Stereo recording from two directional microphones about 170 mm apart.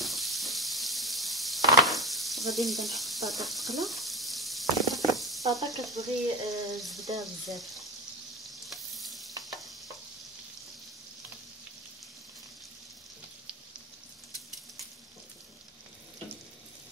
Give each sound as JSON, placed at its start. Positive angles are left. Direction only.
{"t": 0.0, "sound": "sizzle", "side_deg": 0}
{"t": 5.7, "sound": "frying", "side_deg": 0}
{"t": 5.9, "sound": "frying", "side_deg": -20}
{"t": 6.6, "sound": "frying", "side_deg": 0}
{"t": 8.5, "sound": "stir", "side_deg": 0}